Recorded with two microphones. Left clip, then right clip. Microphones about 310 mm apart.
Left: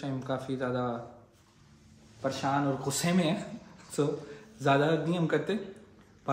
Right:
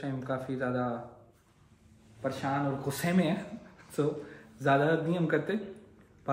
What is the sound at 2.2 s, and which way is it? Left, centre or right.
Speech, centre.